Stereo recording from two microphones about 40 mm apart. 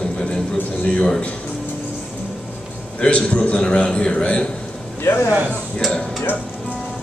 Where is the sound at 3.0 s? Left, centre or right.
Left.